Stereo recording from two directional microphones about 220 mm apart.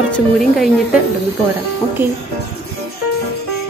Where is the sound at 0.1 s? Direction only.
Centre (ahead or behind).